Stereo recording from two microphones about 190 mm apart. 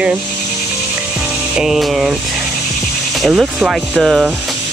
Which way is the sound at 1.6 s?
Centre (ahead or behind).